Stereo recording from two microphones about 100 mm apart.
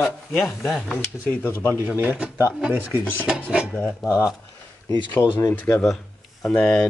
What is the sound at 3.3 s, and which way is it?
Speech, 5° right (ahead or behind).